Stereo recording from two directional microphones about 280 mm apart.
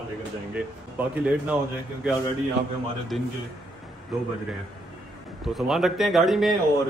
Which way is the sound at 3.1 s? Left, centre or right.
Centre.